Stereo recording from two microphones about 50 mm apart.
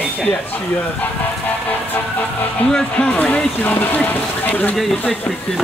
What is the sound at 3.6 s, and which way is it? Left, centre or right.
Speech, left.